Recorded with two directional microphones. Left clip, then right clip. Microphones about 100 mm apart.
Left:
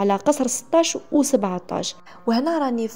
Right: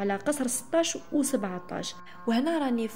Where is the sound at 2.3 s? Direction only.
45° left (ahead or behind).